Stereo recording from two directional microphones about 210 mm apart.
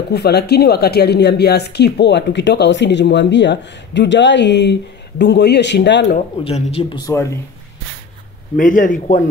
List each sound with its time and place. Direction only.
0.1 s speech: 50° left (ahead or behind)
6.4 s speech: 30° left (ahead or behind)
7.1 s speech: 15° left (ahead or behind)
8.5 s a man's voice: 40° left (ahead or behind)